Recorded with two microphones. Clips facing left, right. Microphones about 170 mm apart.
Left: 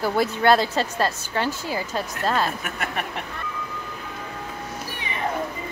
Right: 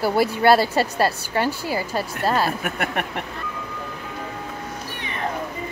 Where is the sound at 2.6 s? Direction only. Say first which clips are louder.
Right 4 dB; 55° right (ahead or behind).